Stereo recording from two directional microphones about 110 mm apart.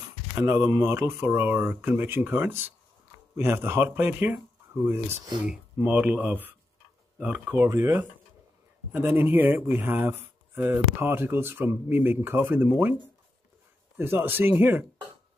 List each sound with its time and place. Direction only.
0.5 s speech: 25° right (ahead or behind)
13.9 s speech: 20° right (ahead or behind)